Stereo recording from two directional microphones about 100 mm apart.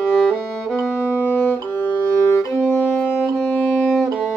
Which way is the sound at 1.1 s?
15° left (ahead or behind).